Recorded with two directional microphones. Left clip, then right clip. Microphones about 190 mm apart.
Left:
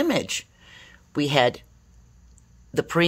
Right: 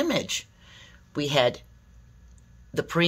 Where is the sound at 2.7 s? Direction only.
35° left (ahead or behind).